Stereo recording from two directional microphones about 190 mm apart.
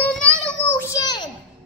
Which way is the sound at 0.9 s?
20° left (ahead or behind).